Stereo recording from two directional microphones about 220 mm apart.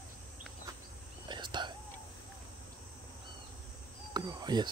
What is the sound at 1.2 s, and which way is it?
Whispering, 20° right (ahead or behind).